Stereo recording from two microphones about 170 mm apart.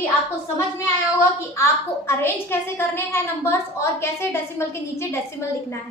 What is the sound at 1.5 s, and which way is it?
A woman's voice, 15° left (ahead or behind).